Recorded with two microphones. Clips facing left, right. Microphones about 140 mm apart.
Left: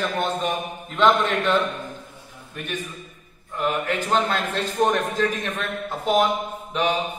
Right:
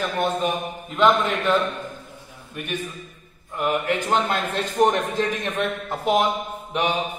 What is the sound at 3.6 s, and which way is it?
A man's voice, 15° right (ahead or behind).